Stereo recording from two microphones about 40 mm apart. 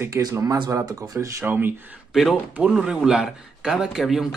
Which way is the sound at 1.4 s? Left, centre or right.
Right.